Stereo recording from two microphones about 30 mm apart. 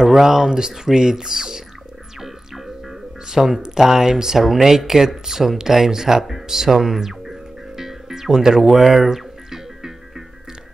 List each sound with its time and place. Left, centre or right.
0.0 s speech: centre
2.1 s music: centre
3.3 s speech: centre
4.4 s speech: centre
6.4 s music: centre